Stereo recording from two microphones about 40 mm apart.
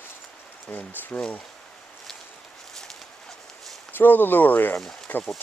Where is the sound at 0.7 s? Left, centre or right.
Left.